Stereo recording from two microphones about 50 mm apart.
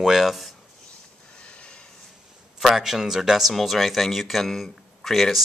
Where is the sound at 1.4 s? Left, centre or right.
Left.